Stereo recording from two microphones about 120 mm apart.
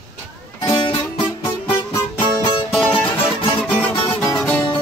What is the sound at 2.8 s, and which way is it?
Music, 15° left (ahead or behind).